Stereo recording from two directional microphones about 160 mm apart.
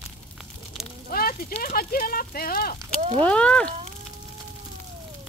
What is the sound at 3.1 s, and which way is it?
Speech, 5° left (ahead or behind).